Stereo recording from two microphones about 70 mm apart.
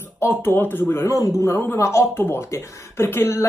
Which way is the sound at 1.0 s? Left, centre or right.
Left.